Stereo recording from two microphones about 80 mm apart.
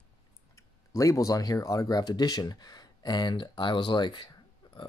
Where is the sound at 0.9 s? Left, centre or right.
Left.